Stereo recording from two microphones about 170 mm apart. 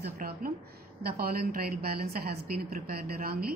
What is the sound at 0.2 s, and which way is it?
A woman's voice, 55° right (ahead or behind).